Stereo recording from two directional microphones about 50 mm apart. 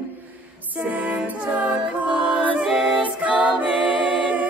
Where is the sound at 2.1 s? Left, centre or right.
Centre.